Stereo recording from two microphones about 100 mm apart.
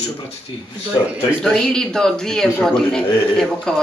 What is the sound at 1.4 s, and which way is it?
A man's voice, 5° left (ahead or behind).